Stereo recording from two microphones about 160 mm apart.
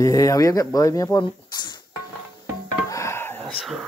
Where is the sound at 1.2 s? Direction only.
25° left (ahead or behind).